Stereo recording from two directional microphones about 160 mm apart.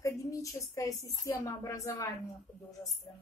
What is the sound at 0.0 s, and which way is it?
A woman's voice, 20° left (ahead or behind).